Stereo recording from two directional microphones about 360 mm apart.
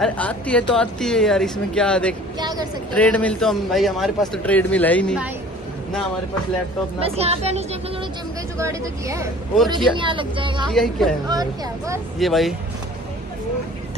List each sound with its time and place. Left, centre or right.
0.0 s speech: centre
2.3 s speech: centre
2.9 s speech: centre
7.0 s speech: centre
10.7 s speech: centre